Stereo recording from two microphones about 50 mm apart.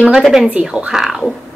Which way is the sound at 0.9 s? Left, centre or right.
Centre.